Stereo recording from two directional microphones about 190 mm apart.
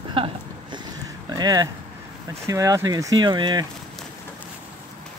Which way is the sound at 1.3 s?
20° right (ahead or behind).